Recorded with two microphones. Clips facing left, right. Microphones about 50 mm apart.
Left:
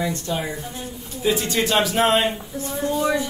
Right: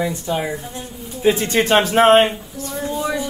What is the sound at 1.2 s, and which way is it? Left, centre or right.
Speech, right.